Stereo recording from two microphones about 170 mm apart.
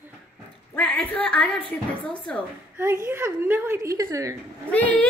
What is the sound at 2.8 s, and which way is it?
A woman's voice, 15° right (ahead or behind).